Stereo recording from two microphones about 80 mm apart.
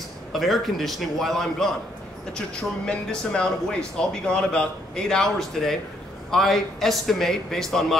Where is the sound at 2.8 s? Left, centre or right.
Centre.